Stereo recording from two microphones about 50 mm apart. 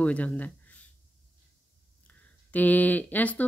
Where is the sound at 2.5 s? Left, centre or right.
Left.